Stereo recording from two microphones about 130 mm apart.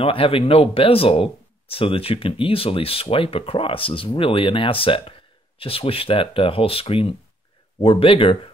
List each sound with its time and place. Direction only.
0.0 s speech: 45° left (ahead or behind)